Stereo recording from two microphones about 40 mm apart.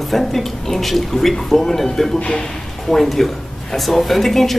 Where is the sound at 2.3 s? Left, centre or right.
Centre.